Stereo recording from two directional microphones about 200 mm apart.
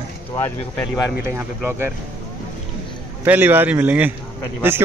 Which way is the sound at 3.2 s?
10° right (ahead or behind).